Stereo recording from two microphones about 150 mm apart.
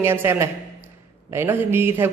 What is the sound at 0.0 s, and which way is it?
A man's voice, 15° right (ahead or behind).